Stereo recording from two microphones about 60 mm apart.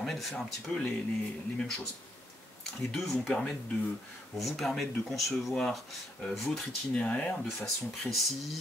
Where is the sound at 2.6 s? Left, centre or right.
Centre.